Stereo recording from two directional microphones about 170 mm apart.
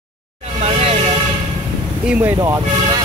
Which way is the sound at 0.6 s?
35° right (ahead or behind).